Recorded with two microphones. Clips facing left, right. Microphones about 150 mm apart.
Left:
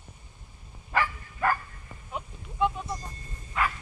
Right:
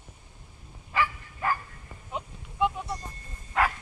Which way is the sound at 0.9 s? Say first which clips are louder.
Even; 55° left (ahead or behind).